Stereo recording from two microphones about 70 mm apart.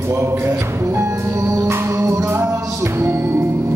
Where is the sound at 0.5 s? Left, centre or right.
Right.